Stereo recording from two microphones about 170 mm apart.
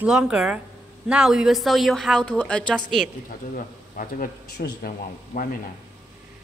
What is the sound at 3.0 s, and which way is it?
Speech, 55° left (ahead or behind).